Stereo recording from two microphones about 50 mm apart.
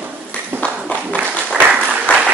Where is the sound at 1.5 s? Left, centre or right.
Right.